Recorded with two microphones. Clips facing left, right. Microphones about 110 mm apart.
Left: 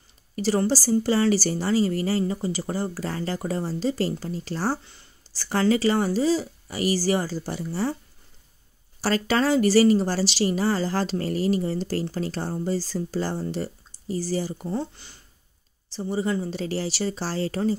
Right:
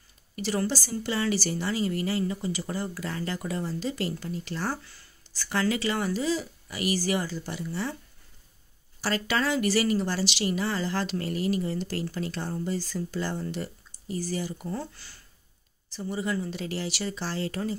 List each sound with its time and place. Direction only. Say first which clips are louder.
0.4 s a woman's voice: left 6 dB; 35° left (ahead or behind)
9.0 s a woman's voice: left 5 dB; 35° left (ahead or behind)